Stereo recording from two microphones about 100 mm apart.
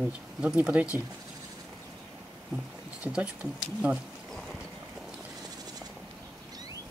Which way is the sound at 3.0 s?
10° right (ahead or behind).